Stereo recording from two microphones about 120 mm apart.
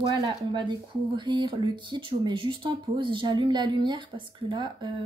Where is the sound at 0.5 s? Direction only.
40° right (ahead or behind).